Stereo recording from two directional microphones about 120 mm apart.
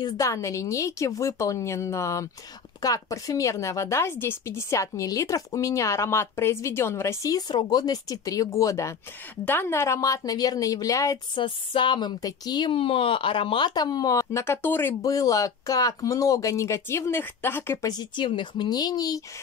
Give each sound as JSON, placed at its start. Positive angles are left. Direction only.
{"t": 0.0, "sound": "a woman's voice", "side_deg": 25}
{"t": 11.3, "sound": "a woman's voice", "side_deg": 45}
{"t": 17.8, "sound": "speech", "side_deg": 35}